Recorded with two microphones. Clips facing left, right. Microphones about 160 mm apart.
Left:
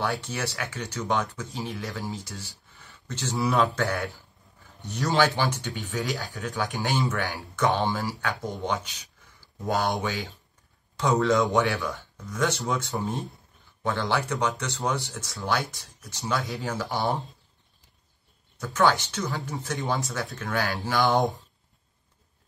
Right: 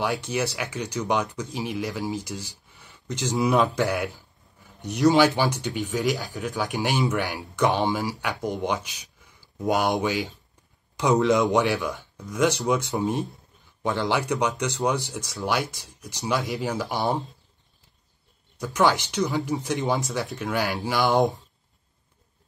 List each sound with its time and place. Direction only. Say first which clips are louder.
0.0 s speech: right 3 dB; 20° right (ahead or behind)
18.6 s speech: right 1 dB; 15° right (ahead or behind)